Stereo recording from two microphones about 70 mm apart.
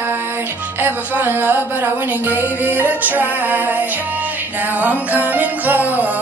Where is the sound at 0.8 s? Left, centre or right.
Right.